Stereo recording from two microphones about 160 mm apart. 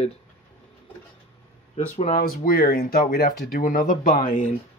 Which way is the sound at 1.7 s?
50° left (ahead or behind).